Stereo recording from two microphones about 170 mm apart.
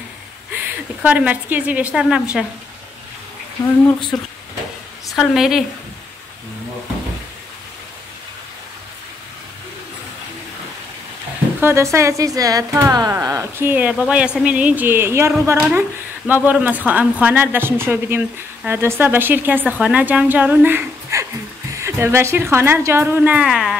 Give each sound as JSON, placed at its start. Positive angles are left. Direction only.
{"t": 0.5, "sound": "a woman's voice", "side_deg": -10}
{"t": 4.1, "sound": "a woman's voice", "side_deg": 0}
{"t": 11.6, "sound": "speech", "side_deg": -15}